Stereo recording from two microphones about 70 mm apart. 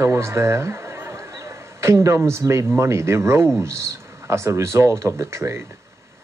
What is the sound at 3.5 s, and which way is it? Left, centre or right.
Speech, right.